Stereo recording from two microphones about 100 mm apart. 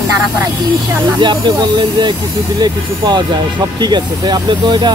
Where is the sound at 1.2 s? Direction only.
50° right (ahead or behind).